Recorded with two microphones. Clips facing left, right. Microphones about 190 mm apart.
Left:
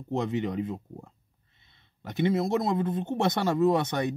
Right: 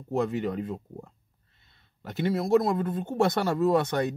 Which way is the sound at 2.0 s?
20° left (ahead or behind).